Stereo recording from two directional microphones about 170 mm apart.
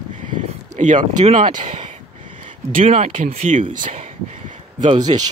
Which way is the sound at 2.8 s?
35° right (ahead or behind).